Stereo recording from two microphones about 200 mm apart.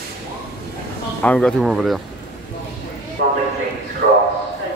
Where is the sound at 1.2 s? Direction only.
5° left (ahead or behind).